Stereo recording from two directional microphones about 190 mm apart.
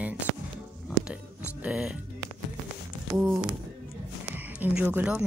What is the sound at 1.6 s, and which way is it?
Speech, 5° right (ahead or behind).